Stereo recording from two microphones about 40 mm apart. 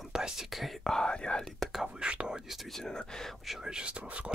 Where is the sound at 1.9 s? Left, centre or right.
Right.